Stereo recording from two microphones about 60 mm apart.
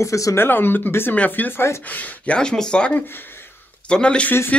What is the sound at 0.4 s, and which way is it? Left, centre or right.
Speech, left.